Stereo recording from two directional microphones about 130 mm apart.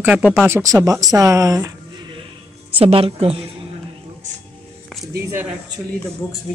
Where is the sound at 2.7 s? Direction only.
45° right (ahead or behind).